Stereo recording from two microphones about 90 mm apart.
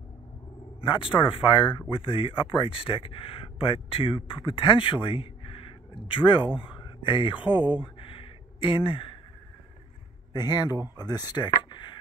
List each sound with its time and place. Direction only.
0.7 s speech: 75° left (ahead or behind)
7.8 s a sound: 75° left (ahead or behind)
10.3 s speech: 50° left (ahead or behind)